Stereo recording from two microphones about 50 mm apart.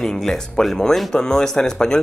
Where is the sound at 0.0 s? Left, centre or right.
Centre.